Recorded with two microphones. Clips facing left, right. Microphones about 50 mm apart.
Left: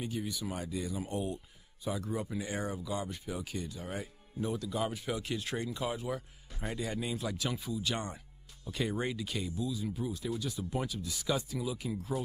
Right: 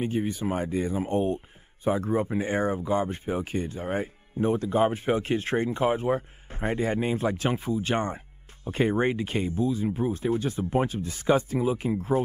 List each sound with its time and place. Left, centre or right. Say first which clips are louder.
0.0 s speech: right 10 dB; right